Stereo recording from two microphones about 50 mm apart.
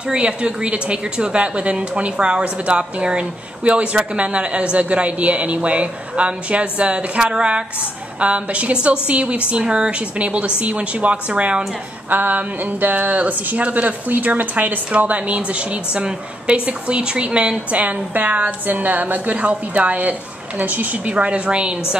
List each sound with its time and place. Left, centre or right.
0.1 s a woman's voice: right